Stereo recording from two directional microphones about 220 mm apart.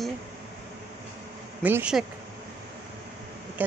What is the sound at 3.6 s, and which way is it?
Speech, 5° right (ahead or behind).